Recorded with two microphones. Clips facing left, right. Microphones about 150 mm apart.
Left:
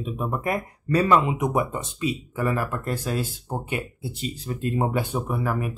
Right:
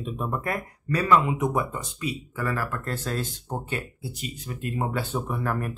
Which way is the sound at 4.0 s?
30° left (ahead or behind).